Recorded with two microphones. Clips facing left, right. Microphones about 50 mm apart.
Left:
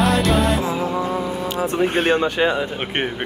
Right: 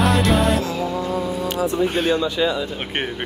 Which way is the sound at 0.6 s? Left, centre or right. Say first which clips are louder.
Left 2 dB; left.